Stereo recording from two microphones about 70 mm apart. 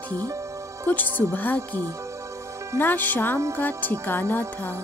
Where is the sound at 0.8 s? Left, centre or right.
Left.